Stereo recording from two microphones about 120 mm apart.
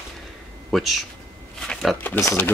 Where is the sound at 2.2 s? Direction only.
20° left (ahead or behind).